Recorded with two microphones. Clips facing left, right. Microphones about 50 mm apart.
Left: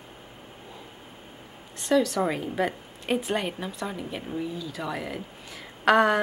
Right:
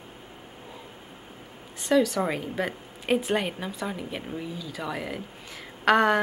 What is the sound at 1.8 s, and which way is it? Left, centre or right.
A woman's voice, centre.